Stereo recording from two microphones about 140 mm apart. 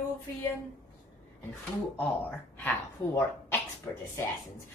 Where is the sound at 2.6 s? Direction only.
15° left (ahead or behind).